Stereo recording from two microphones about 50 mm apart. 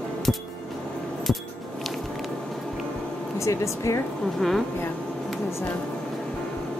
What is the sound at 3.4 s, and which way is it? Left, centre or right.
Speech, left.